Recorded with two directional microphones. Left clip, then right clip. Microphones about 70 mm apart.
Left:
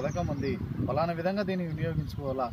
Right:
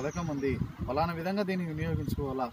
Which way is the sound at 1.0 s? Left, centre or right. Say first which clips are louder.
Left 1 dB; left.